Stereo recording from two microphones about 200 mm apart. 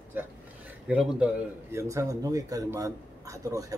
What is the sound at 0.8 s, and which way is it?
A man's voice, 5° right (ahead or behind).